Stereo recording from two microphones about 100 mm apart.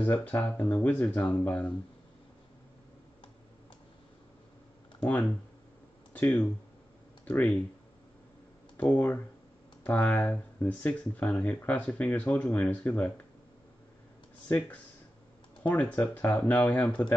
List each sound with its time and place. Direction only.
0.0 s speech: 15° left (ahead or behind)
6.1 s speech: 15° left (ahead or behind)
8.8 s speech: 15° left (ahead or behind)
15.6 s speech: 15° left (ahead or behind)